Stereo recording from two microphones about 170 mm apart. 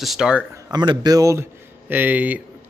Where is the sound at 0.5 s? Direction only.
25° right (ahead or behind).